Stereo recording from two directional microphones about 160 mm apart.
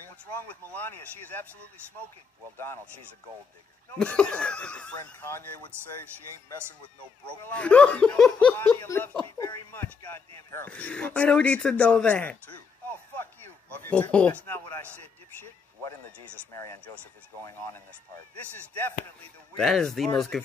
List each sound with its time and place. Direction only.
0.7 s speech: 10° left (ahead or behind)
2.5 s speech: 15° left (ahead or behind)
4.0 s speech: 5° left (ahead or behind)
7.2 s speech: 10° left (ahead or behind)
13.8 s speech: 10° left (ahead or behind)
19.5 s speech: 5° left (ahead or behind)